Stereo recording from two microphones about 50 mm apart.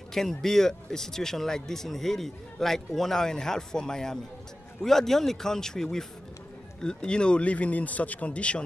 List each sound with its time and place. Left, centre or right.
0.1 s speech: centre; by 8.6 s left